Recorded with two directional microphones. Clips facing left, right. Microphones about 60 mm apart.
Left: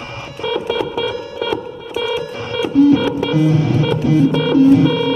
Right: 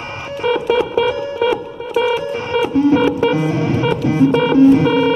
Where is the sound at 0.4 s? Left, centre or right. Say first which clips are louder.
Right 4 dB; right.